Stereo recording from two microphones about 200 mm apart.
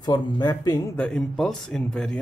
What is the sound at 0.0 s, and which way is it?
Speech, 20° left (ahead or behind).